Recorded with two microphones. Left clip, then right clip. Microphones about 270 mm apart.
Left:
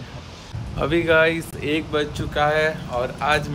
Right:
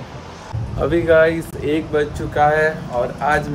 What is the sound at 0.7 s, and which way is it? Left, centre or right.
A man's voice, centre.